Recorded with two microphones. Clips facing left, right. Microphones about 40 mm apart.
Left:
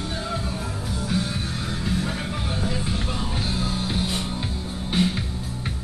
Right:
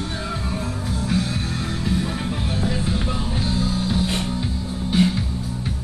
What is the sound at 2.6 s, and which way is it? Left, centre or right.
Music, centre.